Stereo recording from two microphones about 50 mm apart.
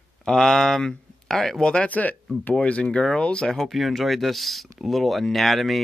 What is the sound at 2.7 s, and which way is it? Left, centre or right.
Speech, left.